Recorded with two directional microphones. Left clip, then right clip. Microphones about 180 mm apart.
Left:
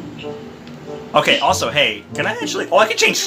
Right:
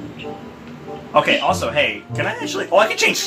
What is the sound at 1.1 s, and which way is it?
Speech, 45° left (ahead or behind).